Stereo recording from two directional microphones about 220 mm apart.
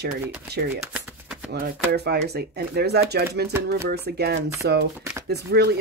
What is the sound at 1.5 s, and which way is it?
Speech, 45° right (ahead or behind).